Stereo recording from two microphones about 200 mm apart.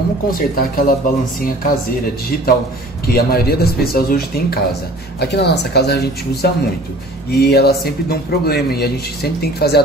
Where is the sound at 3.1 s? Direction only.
50° left (ahead or behind).